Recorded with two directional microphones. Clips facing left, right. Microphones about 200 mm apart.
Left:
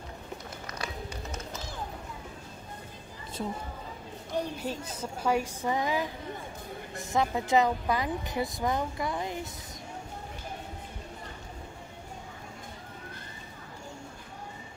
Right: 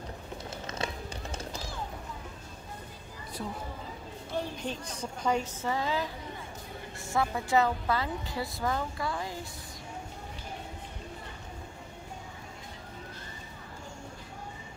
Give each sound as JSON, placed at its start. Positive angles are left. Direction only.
{"t": 0.7, "sound": "run", "side_deg": -25}
{"t": 1.3, "sound": "music", "side_deg": -30}
{"t": 4.3, "sound": "a woman's voice", "side_deg": 5}